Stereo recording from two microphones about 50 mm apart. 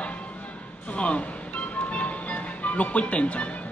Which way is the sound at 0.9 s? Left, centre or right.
Left.